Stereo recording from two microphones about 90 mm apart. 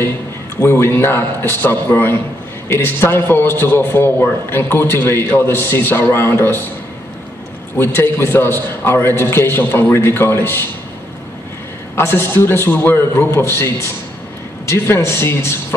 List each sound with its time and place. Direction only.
0.6 s a man's voice: 25° left (ahead or behind)
7.7 s a man's voice: 25° left (ahead or behind)
11.9 s a man's voice: 25° left (ahead or behind)